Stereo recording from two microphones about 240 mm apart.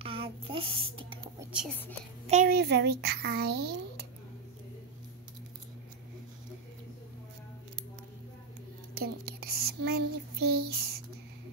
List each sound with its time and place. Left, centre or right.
0.0 s child singing: right
1.4 s whispering: centre
2.2 s a child's voice: right
8.9 s child singing: right